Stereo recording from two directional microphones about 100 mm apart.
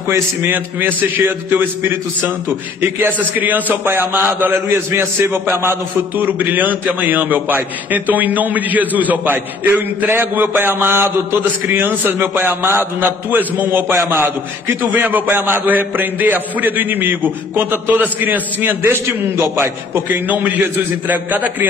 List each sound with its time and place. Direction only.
0.5 s a man's voice: 20° right (ahead or behind)